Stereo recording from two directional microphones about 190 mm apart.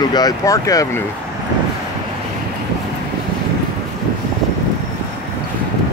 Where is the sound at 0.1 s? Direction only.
20° left (ahead or behind).